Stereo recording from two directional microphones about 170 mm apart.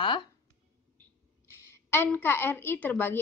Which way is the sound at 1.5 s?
15° left (ahead or behind).